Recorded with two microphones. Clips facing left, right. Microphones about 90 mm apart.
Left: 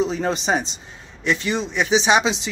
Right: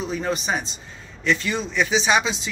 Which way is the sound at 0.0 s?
25° left (ahead or behind).